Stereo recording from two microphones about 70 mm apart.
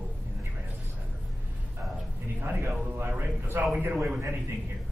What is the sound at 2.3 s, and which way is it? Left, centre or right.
A man's voice, right.